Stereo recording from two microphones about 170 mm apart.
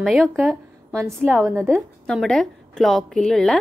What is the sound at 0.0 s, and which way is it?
Speech, centre (ahead or behind).